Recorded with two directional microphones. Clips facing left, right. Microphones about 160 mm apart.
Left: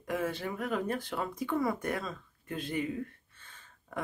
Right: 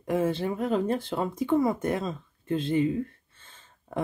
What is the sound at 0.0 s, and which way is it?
Speech, 25° right (ahead or behind).